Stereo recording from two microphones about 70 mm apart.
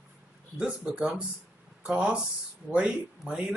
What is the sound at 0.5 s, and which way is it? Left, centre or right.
Speech, centre.